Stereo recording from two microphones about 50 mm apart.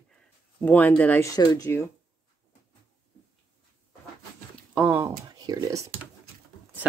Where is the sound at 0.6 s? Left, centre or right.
Left.